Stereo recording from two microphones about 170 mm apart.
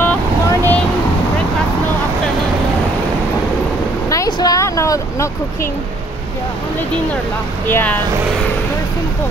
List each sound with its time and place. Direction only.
0.0 s vehicle: 10° left (ahead or behind)
4.1 s a sound: 20° left (ahead or behind)
7.6 s speech: 10° left (ahead or behind)